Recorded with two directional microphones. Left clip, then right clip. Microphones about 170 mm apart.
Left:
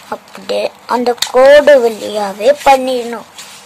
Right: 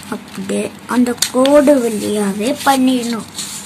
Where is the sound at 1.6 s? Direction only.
65° left (ahead or behind).